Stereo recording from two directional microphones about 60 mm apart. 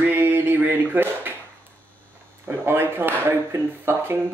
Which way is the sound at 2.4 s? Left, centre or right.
Right.